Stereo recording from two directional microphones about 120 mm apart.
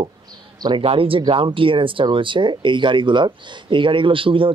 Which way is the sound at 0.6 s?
35° right (ahead or behind).